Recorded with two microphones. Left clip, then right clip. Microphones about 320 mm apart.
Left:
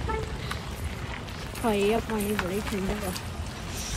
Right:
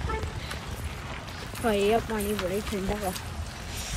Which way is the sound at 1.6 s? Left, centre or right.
Centre.